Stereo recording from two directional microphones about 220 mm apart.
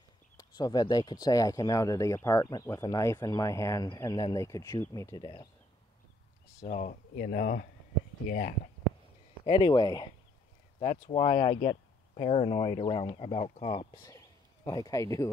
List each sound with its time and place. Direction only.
0.4 s speech: 20° left (ahead or behind)
6.6 s speech: 35° left (ahead or behind)
9.5 s speech: 20° left (ahead or behind)